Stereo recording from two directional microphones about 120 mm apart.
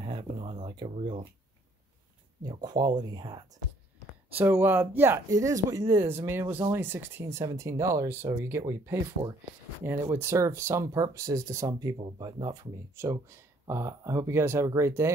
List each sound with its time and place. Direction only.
0.0 s a sound: 50° right (ahead or behind)
0.5 s speech: 40° right (ahead or behind)
2.4 s speech: 35° right (ahead or behind)
4.3 s speech: 15° right (ahead or behind)